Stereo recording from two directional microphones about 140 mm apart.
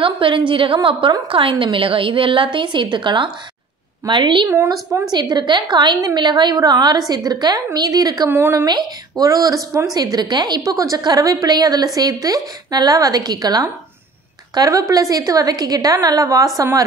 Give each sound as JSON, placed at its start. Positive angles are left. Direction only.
{"t": 0.0, "sound": "a woman's voice", "side_deg": -40}
{"t": 4.5, "sound": "a woman's voice", "side_deg": -20}
{"t": 5.1, "sound": "a woman's voice", "side_deg": -30}
{"t": 8.4, "sound": "speech", "side_deg": -15}
{"t": 8.6, "sound": "a woman's voice", "side_deg": -30}